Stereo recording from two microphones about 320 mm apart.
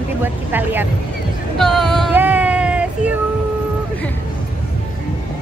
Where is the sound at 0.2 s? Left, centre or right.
Centre.